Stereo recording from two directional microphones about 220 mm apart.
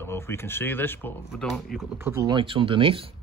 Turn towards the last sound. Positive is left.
turn(degrees=-25)  # may be behind; listen again after turning